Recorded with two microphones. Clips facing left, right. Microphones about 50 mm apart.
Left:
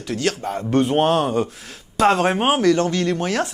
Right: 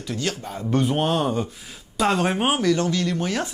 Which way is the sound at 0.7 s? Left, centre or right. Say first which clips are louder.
Left 4 dB; left.